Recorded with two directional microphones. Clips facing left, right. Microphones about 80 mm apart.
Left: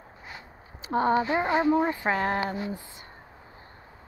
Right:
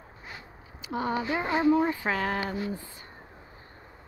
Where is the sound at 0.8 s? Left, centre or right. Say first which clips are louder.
Left 6 dB; left.